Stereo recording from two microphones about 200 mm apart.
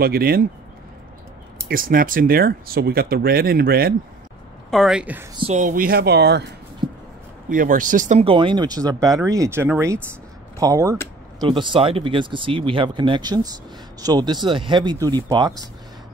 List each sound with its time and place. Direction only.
0.0 s speech: 50° right (ahead or behind)
1.6 s speech: 45° right (ahead or behind)
4.6 s a woman's voice: centre (ahead or behind)
5.3 s speech: 30° right (ahead or behind); by 6.4 s 55° right (ahead or behind)
6.8 s a sound: 20° right (ahead or behind)
7.4 s speech: 40° right (ahead or behind); by 15.6 s 20° right (ahead or behind)